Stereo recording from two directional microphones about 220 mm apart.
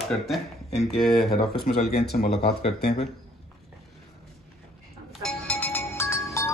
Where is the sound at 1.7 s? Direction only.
40° left (ahead or behind).